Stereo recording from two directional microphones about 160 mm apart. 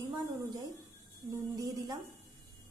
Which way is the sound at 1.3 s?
20° right (ahead or behind).